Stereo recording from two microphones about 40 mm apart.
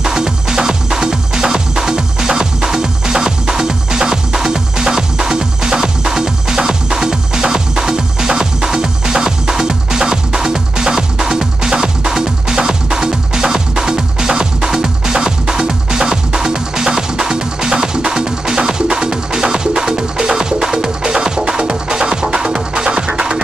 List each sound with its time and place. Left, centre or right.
0.0 s music: centre